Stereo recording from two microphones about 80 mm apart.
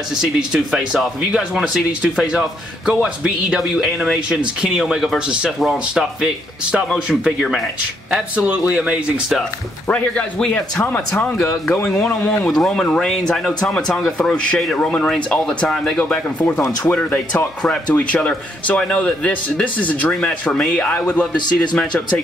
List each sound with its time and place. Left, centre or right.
0.2 s speech: centre
2.9 s speech: centre
7.2 s speech: centre
8.1 s speech: centre
9.8 s a man's voice: centre
12.4 s a man's voice: centre